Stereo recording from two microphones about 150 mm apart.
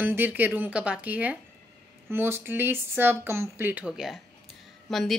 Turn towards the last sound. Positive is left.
turn(degrees=0)  # may be behind; listen again after turning